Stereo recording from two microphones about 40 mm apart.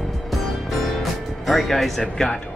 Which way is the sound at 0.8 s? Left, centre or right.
Centre.